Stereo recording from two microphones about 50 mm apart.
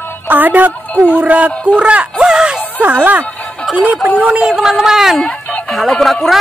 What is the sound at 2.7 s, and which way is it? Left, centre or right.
Speech, right.